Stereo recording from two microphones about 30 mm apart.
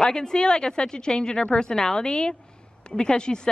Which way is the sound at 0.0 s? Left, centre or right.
Left.